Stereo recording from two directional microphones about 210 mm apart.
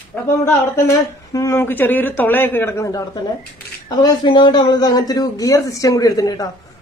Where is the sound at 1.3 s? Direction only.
10° left (ahead or behind).